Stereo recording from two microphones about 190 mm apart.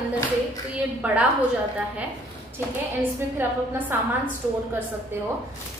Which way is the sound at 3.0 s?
10° right (ahead or behind).